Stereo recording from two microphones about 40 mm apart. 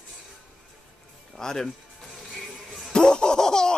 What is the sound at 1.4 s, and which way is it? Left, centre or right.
Speech, centre.